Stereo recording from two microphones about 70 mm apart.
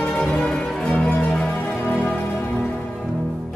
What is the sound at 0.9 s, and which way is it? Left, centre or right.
Music, centre.